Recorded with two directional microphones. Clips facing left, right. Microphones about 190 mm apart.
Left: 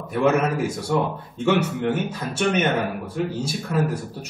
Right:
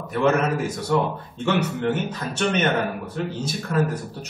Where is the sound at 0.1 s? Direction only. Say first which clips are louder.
Left 1 dB; 10° left (ahead or behind).